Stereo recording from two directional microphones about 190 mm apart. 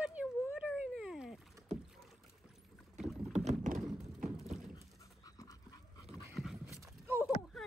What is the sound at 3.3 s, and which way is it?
Clip-clop, 35° right (ahead or behind).